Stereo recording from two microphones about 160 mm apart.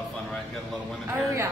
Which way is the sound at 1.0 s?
15° right (ahead or behind).